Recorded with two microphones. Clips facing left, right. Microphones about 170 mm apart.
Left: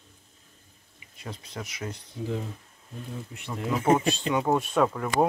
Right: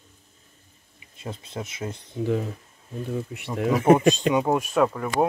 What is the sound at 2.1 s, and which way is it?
Speech, 65° right (ahead or behind).